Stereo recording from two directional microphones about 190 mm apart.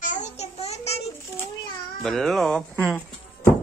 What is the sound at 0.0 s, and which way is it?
Babbling, 40° left (ahead or behind).